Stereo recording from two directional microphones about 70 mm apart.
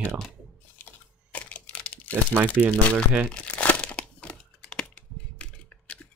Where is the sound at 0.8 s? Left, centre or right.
Centre.